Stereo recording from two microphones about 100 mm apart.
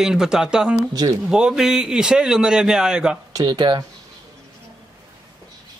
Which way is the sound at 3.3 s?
40° right (ahead or behind).